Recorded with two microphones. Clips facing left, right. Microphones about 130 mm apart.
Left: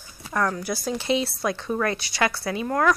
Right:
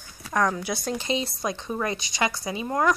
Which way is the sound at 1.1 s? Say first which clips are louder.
Left 5 dB; 20° right (ahead or behind).